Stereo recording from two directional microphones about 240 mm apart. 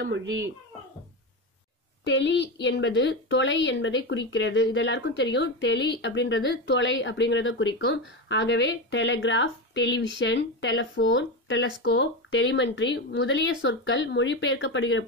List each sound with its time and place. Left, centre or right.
0.0 s a child's voice: right
2.0 s a woman's voice: left